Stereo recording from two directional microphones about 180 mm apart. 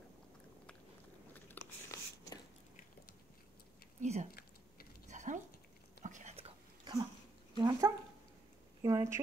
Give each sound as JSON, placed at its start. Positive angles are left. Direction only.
{"t": 1.3, "sound": "biting", "side_deg": 15}
{"t": 4.0, "sound": "speech", "side_deg": -40}
{"t": 4.3, "sound": "chewing", "side_deg": 55}
{"t": 5.0, "sound": "a sound", "side_deg": -45}
{"t": 6.0, "sound": "whispering", "side_deg": -40}
{"t": 7.5, "sound": "dog", "side_deg": -20}
{"t": 8.8, "sound": "a sound", "side_deg": -15}